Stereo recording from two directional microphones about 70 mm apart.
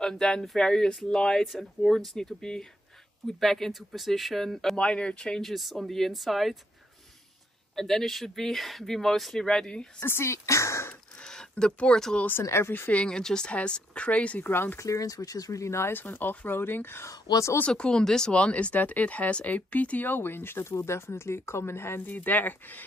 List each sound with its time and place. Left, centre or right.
0.0 s speech: centre
4.7 s speech: centre
5.5 s speech: centre
7.7 s speech: centre
10.0 s speech: left
11.1 s speech: centre
12.4 s speech: left
12.9 s speech: centre
14.4 s speech: left
14.8 s speech: left
15.9 s speech: left
17.1 s speech: left
17.6 s speech: centre